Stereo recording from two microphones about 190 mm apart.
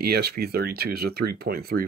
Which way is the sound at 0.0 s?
55° right (ahead or behind).